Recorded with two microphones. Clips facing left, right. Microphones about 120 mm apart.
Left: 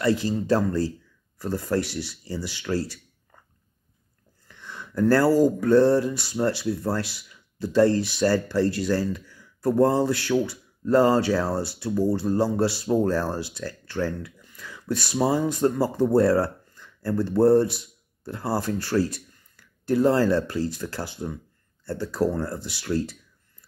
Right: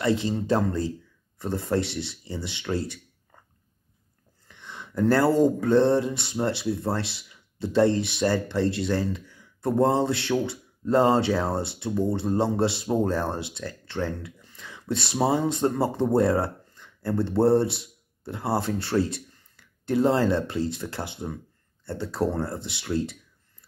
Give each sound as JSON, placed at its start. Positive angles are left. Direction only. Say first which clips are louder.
{"t": 0.0, "sound": "speech", "louder": "left 1 dB", "side_deg": -20}
{"t": 4.5, "sound": "speech", "louder": "left 1 dB", "side_deg": -20}